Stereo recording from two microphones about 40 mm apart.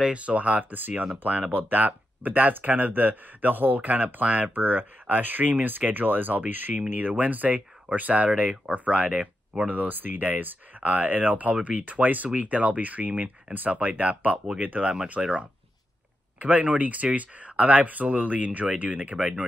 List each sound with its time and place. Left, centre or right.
0.0 s speech: right
0.7 s speech: right
8.3 s speech: right
15.2 s speech: centre
16.3 s speech: right